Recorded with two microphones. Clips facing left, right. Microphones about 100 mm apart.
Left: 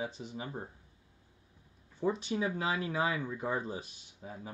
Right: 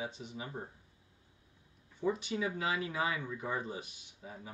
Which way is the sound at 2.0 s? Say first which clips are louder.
Left 2 dB; 35° left (ahead or behind).